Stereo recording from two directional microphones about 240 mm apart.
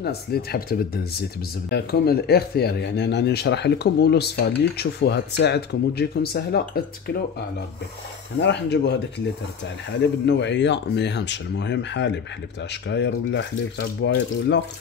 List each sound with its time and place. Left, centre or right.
0.0 s speech: left
8.4 s speech: left
9.9 s speech: left